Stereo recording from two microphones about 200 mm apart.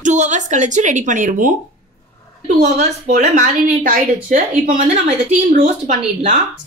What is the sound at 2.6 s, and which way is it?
A woman's voice, 40° right (ahead or behind).